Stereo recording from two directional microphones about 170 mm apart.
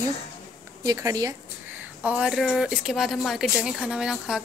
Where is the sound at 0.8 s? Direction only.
20° right (ahead or behind).